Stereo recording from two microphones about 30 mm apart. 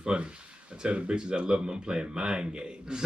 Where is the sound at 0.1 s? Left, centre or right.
Right.